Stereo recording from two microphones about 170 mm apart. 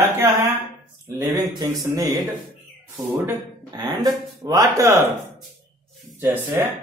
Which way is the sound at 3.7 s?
25° right (ahead or behind).